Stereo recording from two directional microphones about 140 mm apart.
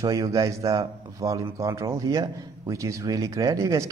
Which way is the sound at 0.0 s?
25° right (ahead or behind).